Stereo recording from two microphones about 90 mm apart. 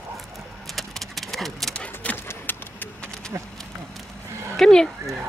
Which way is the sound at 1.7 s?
15° left (ahead or behind).